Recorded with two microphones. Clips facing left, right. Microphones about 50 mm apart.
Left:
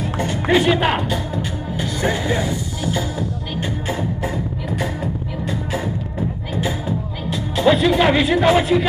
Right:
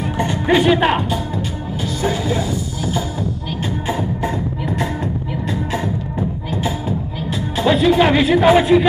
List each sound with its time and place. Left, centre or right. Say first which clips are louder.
0.5 s speech: right 2 dB; centre
1.8 s music: right 1 dB; centre
4.2 s music: right 3 dB; centre
7.5 s speech: right 1 dB; centre